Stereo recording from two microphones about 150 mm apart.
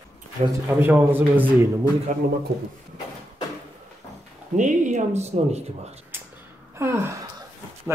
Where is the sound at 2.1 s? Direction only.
50° right (ahead or behind).